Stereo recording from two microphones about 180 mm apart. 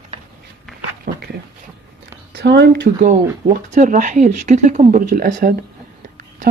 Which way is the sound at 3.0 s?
40° right (ahead or behind).